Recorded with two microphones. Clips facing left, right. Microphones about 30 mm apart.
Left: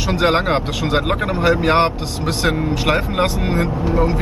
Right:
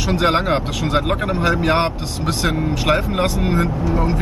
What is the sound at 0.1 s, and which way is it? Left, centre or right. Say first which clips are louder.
Speech: left 1 dB; centre.